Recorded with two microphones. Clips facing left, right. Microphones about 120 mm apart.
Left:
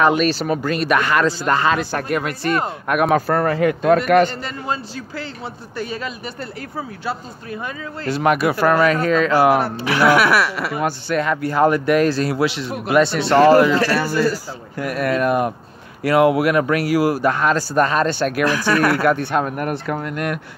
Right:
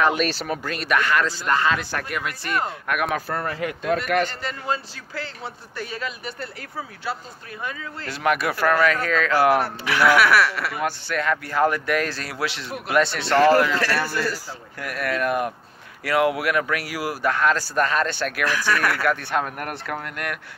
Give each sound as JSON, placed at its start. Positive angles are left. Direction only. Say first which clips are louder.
{"t": 0.0, "sound": "a man's voice", "louder": "left 5 dB", "side_deg": 5}
{"t": 1.4, "sound": "speech", "louder": "left 4 dB", "side_deg": 35}
{"t": 3.3, "sound": "speech", "louder": "left 10 dB", "side_deg": 60}
{"t": 4.2, "sound": "a man's voice", "louder": "left 7 dB", "side_deg": 25}
{"t": 14.9, "sound": "speech", "louder": "left 5 dB", "side_deg": 25}